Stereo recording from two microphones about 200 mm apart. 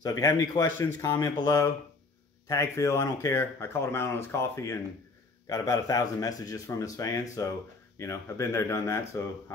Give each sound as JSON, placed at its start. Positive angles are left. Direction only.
{"t": 0.0, "sound": "speech", "side_deg": 15}